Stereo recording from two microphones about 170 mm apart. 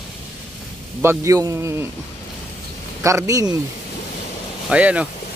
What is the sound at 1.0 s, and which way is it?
Speech, 20° right (ahead or behind).